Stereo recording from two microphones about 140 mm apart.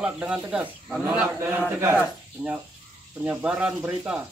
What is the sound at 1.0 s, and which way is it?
Speech, 20° right (ahead or behind).